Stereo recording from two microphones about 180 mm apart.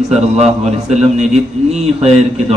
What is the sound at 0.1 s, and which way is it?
A man's voice, 35° right (ahead or behind).